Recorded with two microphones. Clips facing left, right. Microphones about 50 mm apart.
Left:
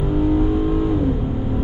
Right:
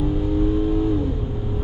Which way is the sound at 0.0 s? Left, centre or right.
Left.